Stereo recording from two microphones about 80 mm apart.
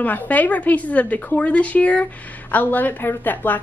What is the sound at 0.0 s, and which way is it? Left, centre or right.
A woman's voice, left.